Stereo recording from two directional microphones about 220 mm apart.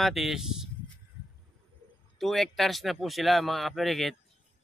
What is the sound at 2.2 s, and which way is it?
Speech, centre (ahead or behind).